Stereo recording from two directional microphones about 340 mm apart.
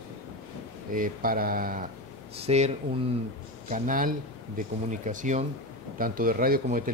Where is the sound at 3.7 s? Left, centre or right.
Right.